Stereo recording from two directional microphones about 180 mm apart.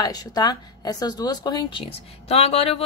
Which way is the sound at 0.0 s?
20° left (ahead or behind).